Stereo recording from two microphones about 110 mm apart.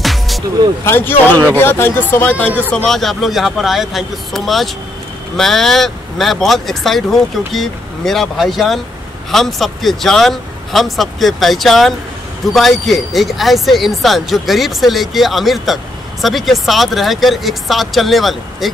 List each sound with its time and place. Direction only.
0.0 s music: centre (ahead or behind)
0.8 s speech: 20° left (ahead or behind)
2.7 s speech: centre (ahead or behind)